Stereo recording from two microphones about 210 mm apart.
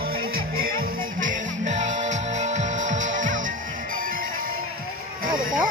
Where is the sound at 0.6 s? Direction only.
45° right (ahead or behind).